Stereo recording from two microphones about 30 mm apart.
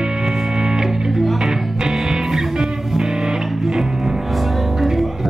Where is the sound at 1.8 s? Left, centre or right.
Centre.